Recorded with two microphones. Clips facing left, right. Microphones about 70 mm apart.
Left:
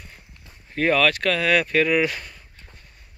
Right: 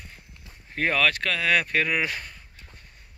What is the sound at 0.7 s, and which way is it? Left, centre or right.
Speech, centre.